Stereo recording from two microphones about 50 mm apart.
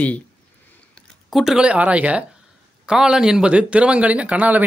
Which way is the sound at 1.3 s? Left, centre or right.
Centre.